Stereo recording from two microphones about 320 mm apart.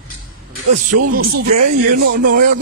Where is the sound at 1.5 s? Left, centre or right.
Right.